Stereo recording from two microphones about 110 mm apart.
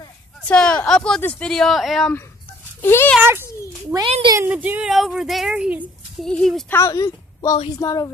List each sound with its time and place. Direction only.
0.5 s speech: 10° left (ahead or behind)
2.8 s speech: 20° left (ahead or behind)
3.2 s a child's voice: 20° right (ahead or behind)
4.8 s speech: centre (ahead or behind)
6.1 s speech: 5° left (ahead or behind)
6.7 s a woman's voice: 30° left (ahead or behind)